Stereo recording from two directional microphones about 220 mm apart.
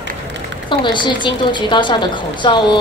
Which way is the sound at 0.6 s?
20° left (ahead or behind).